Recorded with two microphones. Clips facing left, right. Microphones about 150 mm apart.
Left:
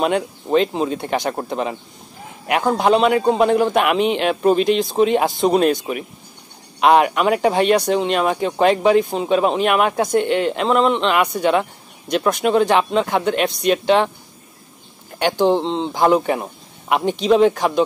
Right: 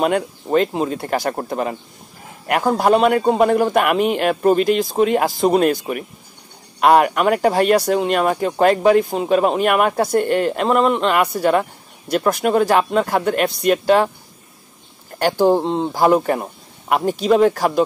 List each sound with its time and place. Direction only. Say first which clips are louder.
0.0 s speech: right 1 dB; 5° right (ahead or behind)
15.1 s speech: right 1 dB; 5° right (ahead or behind)